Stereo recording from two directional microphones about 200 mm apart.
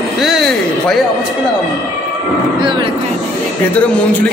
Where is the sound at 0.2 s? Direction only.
Centre (ahead or behind).